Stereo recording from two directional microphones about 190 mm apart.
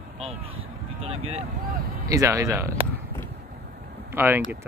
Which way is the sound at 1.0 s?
30° right (ahead or behind).